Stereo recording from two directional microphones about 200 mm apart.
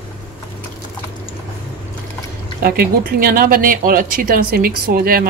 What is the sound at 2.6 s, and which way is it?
Speech, 50° right (ahead or behind).